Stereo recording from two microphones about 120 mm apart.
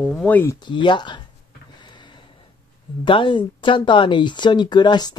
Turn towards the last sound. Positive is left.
turn(degrees=35)  # may be behind; listen again after turning